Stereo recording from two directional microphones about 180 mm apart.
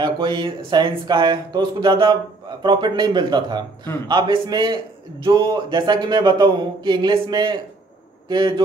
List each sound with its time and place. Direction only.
0.0 s speech: 25° right (ahead or behind)